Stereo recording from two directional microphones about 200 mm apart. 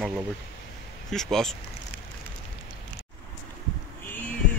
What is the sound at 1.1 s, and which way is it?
Speech, centre (ahead or behind).